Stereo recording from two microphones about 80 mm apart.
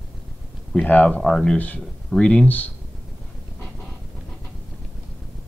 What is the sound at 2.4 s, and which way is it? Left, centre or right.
Speech, left.